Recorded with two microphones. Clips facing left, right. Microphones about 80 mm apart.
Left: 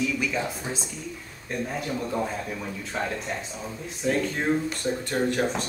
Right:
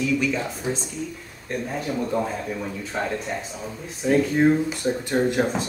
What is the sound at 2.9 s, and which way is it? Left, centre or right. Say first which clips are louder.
Speech: right 3 dB; centre.